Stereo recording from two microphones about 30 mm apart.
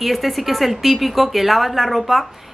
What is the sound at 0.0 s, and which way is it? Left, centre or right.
Speech, centre.